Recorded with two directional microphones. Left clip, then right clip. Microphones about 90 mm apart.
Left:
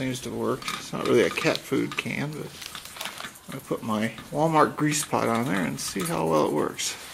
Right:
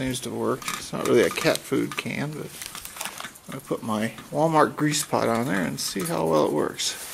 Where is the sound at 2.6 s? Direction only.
40° right (ahead or behind).